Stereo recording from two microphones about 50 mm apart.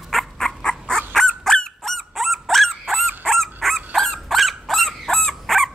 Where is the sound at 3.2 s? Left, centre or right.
Centre.